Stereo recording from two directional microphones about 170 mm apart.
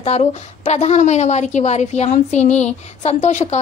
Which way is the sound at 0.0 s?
40° left (ahead or behind).